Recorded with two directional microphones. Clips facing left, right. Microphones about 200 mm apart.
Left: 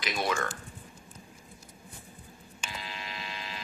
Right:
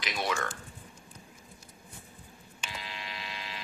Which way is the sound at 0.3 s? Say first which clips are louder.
Left 1 dB; 40° left (ahead or behind).